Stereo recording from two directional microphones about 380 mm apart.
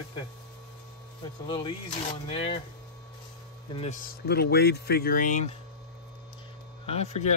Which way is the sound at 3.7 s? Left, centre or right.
Left.